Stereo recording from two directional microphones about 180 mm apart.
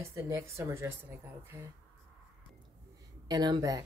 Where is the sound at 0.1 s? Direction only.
15° right (ahead or behind).